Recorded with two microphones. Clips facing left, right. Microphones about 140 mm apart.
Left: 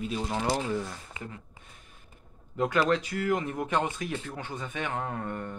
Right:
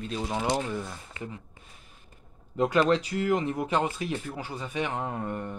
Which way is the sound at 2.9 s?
30° right (ahead or behind).